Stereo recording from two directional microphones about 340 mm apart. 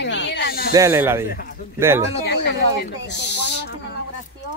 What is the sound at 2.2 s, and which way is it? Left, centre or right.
Speech, left.